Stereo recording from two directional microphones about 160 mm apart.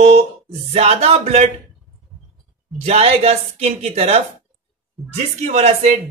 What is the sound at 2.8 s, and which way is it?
A man's voice, 40° right (ahead or behind).